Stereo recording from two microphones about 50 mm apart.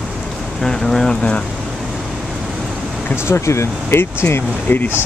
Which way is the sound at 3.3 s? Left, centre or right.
Left.